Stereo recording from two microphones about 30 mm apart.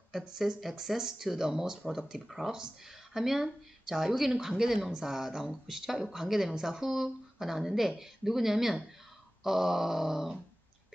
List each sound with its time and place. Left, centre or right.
0.4 s speech: centre
0.7 s speech: centre